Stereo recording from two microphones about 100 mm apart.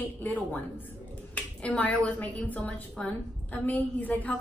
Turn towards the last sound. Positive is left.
turn(degrees=15)  # may be behind; listen again after turning